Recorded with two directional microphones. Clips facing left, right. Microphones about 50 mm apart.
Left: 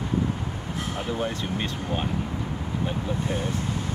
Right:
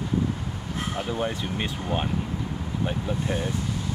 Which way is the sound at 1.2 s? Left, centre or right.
Centre.